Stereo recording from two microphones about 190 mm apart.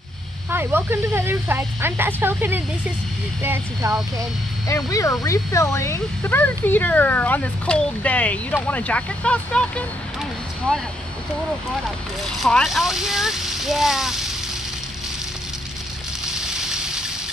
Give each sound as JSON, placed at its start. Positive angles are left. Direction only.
{"t": 0.5, "sound": "speech", "side_deg": -10}
{"t": 4.6, "sound": "speech", "side_deg": 15}
{"t": 12.4, "sound": "speech", "side_deg": 0}
{"t": 16.5, "sound": "water", "side_deg": -5}